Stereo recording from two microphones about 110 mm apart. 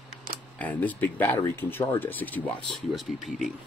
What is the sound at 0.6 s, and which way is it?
Speech, 15° left (ahead or behind).